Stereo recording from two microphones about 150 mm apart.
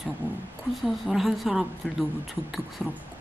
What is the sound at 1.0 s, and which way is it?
Speech, centre (ahead or behind).